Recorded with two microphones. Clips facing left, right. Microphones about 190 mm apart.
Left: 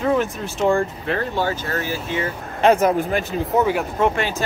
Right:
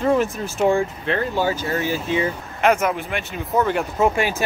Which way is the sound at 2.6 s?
35° left (ahead or behind).